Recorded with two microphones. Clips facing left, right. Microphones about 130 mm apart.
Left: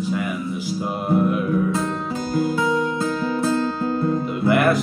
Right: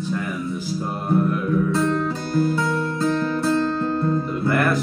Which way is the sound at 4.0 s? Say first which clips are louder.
Left 1 dB; 5° left (ahead or behind).